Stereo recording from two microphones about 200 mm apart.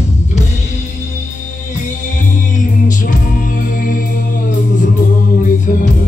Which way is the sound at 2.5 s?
40° left (ahead or behind).